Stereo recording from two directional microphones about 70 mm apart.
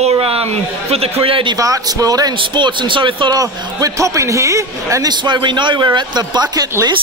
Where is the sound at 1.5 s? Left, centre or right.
Right.